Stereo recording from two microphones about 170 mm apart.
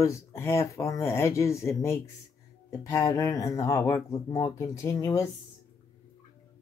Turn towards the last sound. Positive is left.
turn(degrees=20)  # may be behind; listen again after turning